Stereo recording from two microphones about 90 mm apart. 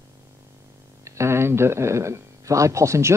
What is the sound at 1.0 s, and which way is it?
Speech, 30° right (ahead or behind).